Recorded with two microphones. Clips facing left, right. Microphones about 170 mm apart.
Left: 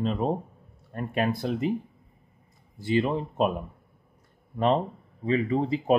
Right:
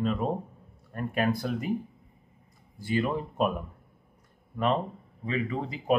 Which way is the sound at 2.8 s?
20° left (ahead or behind).